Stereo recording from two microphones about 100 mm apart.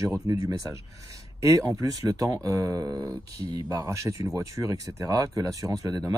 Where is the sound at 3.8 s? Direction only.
30° right (ahead or behind).